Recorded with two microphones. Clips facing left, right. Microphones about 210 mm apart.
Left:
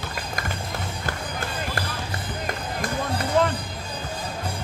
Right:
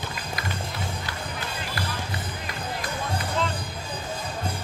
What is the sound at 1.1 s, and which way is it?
Music, 50° left (ahead or behind).